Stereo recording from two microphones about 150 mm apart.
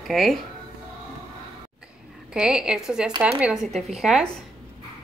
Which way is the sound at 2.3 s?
5° right (ahead or behind).